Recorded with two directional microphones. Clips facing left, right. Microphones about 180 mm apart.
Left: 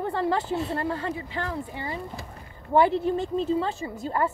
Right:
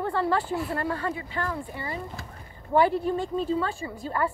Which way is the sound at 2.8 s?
25° left (ahead or behind).